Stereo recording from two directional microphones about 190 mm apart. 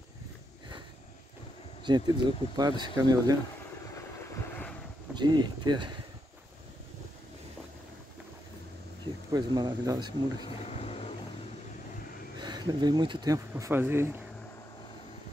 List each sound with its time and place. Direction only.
1.9 s speech: 25° right (ahead or behind)
5.1 s speech: 25° right (ahead or behind)
9.0 s speech: 25° right (ahead or behind)
10.6 s vehicle: 35° left (ahead or behind)
12.4 s speech: 20° right (ahead or behind)